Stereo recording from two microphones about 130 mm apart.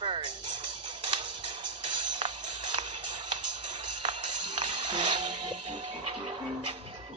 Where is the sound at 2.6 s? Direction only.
65° right (ahead or behind).